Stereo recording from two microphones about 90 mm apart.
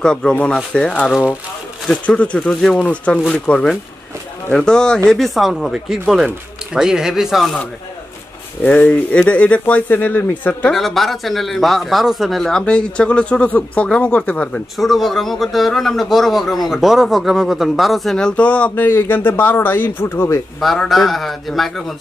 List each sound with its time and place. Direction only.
0.0 s speech: 10° left (ahead or behind)
8.6 s speech: 15° left (ahead or behind)
10.7 s speech: 5° left (ahead or behind)
14.8 s speech: centre (ahead or behind); by 20.2 s 25° left (ahead or behind)
20.6 s speech: centre (ahead or behind)